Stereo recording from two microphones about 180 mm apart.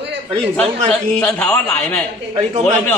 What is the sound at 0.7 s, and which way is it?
Speech, 40° right (ahead or behind).